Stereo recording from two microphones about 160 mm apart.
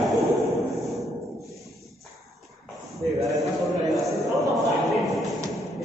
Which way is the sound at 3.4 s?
Centre (ahead or behind).